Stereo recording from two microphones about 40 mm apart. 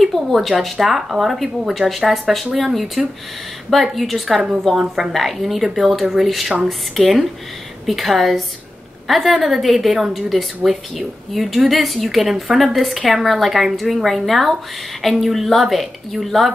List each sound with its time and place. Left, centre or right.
0.0 s speech: centre